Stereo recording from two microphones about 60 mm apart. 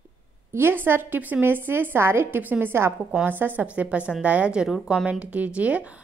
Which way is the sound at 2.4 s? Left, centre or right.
Right.